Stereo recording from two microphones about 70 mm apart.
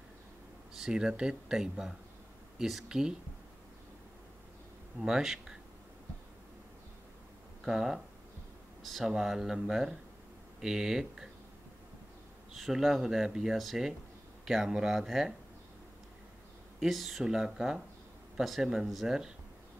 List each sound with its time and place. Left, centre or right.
0.7 s speech: centre
5.0 s speech: centre
7.6 s speech: centre
12.5 s speech: centre
16.8 s speech: centre